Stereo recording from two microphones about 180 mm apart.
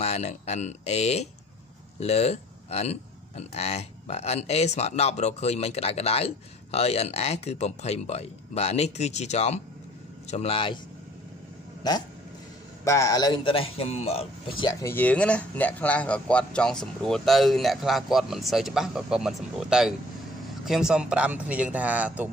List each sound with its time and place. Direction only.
0.0 s speech: 40° left (ahead or behind)
12.8 s a man's voice: 15° left (ahead or behind); by 14.2 s 35° left (ahead or behind)
14.6 s a man's voice: 20° left (ahead or behind); by 22.3 s 10° right (ahead or behind)